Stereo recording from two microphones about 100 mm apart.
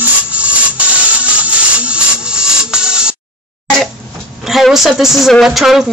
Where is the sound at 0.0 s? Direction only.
15° right (ahead or behind).